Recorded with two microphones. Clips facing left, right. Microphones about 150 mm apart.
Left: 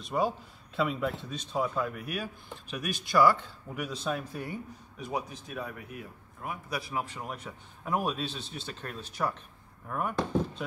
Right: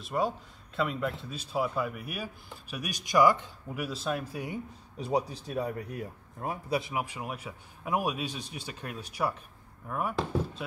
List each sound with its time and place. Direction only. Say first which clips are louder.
0.0 s speech: left 1 dB; centre (ahead or behind); by 3.5 s 15° right (ahead or behind)
3.7 s speech: right 1 dB; 5° right (ahead or behind)
4.9 s a man's voice: right 5 dB; 30° right (ahead or behind)
6.9 s speech: right 1 dB; 10° right (ahead or behind)